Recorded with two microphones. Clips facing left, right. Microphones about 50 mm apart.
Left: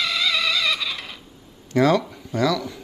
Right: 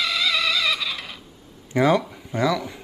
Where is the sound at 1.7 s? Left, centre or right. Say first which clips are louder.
Left 1 dB; centre.